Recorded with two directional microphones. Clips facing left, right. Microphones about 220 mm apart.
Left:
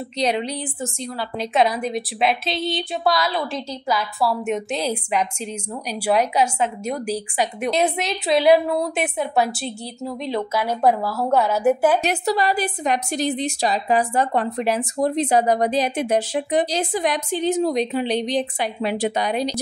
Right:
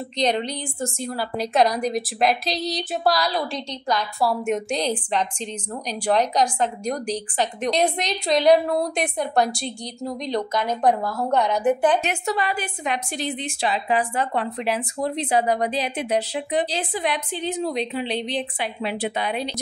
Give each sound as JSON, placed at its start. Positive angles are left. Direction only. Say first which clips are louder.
{"t": 0.2, "sound": "a woman's voice", "louder": "left 1 dB", "side_deg": 5}
{"t": 12.0, "sound": "a woman's voice", "louder": "left 4 dB", "side_deg": 35}